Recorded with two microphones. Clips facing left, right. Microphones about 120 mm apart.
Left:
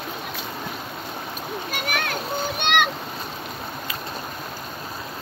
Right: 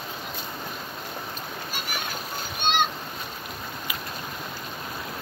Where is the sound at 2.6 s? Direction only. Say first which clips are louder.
Left 2 dB; 65° left (ahead or behind).